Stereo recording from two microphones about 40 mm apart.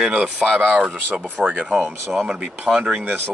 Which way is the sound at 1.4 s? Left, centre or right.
Centre.